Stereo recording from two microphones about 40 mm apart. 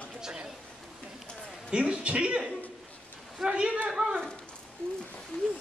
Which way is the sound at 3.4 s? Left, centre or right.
Right.